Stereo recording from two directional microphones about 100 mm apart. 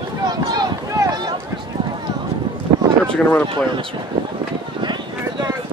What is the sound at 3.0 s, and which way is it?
Speech, 10° left (ahead or behind).